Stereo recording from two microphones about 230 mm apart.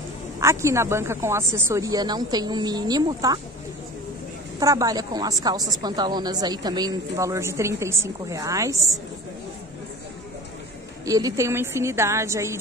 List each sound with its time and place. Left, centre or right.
0.4 s a woman's voice: centre
4.6 s a woman's voice: centre
11.1 s a woman's voice: centre